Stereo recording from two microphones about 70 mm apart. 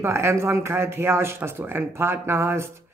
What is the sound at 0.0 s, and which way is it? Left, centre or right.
Speech, right.